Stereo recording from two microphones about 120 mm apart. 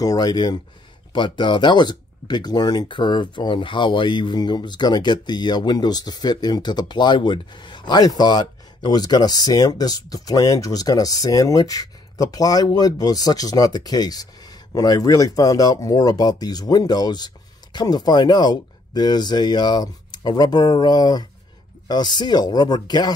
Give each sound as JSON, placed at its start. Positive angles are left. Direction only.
{"t": 0.0, "sound": "speech", "side_deg": 35}